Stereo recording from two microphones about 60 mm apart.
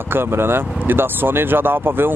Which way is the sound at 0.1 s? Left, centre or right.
Right.